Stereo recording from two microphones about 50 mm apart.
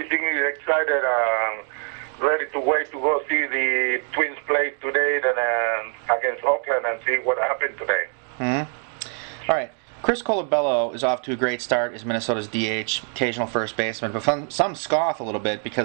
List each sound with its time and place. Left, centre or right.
0.0 s radio: centre
2.1 s a sound: left
3.1 s speech: centre